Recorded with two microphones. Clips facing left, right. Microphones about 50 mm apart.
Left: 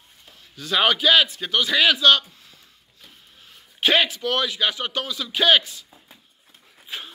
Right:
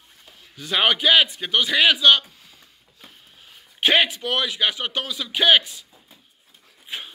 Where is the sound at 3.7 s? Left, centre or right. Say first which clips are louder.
Right 1 dB; centre.